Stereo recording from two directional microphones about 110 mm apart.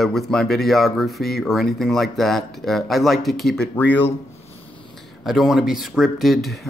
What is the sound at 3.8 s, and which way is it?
Speech, 15° left (ahead or behind).